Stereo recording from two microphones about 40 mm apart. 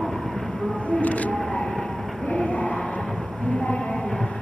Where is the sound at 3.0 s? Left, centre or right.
Centre.